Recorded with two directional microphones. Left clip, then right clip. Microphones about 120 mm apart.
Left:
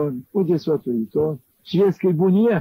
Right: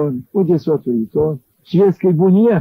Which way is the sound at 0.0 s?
35° left (ahead or behind).